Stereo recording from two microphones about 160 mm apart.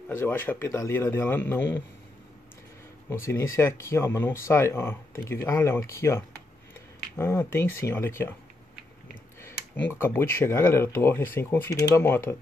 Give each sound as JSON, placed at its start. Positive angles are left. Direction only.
{"t": 0.1, "sound": "speech", "side_deg": 15}
{"t": 3.1, "sound": "speech", "side_deg": 15}
{"t": 9.4, "sound": "speech", "side_deg": 15}